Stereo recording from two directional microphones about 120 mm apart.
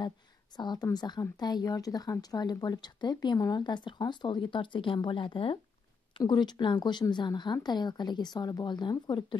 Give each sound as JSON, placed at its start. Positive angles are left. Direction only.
{"t": 0.6, "sound": "speech", "side_deg": 35}